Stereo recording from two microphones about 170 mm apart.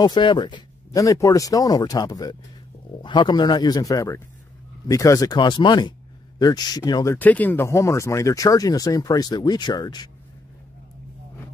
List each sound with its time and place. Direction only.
0.0 s speech: 25° left (ahead or behind)
7.2 s speech: 10° left (ahead or behind); by 10.0 s 25° left (ahead or behind)